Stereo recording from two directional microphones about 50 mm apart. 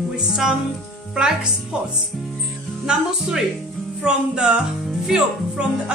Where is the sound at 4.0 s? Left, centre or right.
Centre.